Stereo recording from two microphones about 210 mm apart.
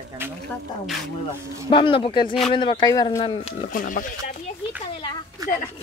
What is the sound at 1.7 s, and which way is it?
Speech, 25° left (ahead or behind).